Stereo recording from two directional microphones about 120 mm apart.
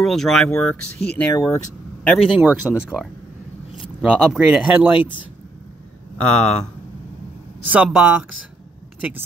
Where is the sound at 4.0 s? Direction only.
5° right (ahead or behind).